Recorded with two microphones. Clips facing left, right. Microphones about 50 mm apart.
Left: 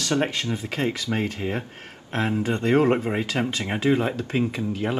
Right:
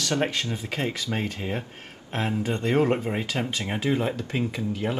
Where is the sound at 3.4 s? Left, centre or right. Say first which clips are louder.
Left 3 dB; centre.